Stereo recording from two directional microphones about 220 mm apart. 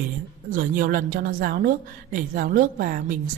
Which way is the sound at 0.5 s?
40° right (ahead or behind).